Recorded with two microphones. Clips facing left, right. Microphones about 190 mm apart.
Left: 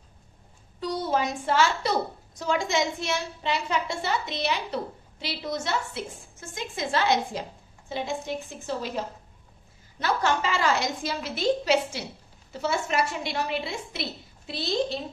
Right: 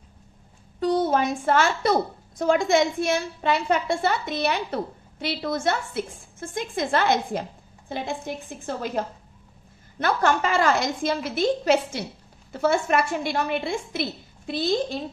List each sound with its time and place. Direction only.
0.7 s a woman's voice: 50° right (ahead or behind)
8.5 s a woman's voice: 55° right (ahead or behind)